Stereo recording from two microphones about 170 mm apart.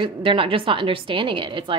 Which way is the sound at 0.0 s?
30° right (ahead or behind).